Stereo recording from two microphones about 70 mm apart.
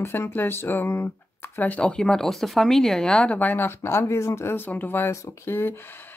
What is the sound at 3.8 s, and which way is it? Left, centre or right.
Speech, left.